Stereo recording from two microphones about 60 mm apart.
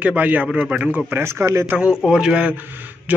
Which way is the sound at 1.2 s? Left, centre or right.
Right.